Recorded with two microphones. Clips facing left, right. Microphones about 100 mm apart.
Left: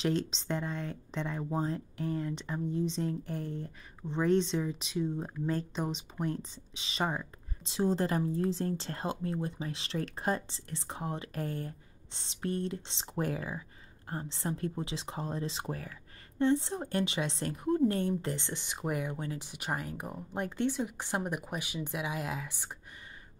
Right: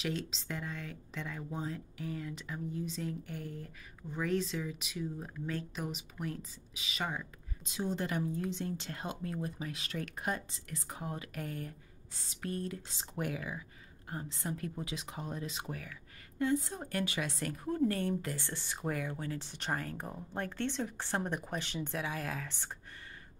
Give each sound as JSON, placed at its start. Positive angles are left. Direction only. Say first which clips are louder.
{"t": 0.0, "sound": "speech", "louder": "left 6 dB", "side_deg": 30}
{"t": 13.2, "sound": "speech", "louder": "left 4 dB", "side_deg": 35}